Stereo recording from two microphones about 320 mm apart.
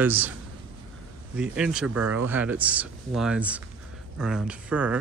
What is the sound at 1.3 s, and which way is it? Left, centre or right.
A man's voice, centre.